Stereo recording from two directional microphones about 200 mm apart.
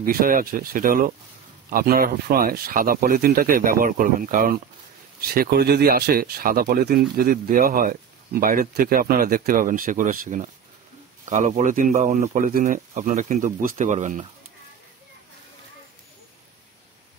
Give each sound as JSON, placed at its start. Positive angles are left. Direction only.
{"t": 0.0, "sound": "speech", "side_deg": -45}